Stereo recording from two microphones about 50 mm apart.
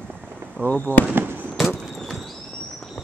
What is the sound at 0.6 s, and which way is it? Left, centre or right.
Speech, right.